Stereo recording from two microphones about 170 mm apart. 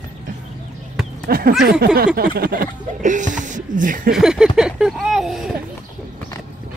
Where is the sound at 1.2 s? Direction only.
60° right (ahead or behind).